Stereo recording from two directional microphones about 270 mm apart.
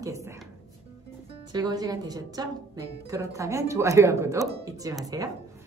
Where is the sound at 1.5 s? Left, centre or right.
Centre.